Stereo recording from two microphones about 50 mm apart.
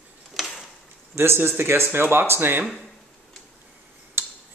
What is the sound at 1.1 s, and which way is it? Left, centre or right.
Speech, right.